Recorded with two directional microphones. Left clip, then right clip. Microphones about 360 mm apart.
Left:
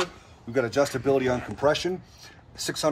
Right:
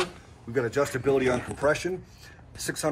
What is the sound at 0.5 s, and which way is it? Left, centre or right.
Speech, left.